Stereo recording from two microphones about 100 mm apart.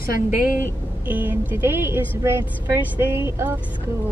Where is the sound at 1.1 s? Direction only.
15° right (ahead or behind).